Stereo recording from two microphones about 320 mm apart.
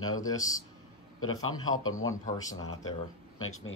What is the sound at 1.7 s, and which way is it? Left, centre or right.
Speech, left.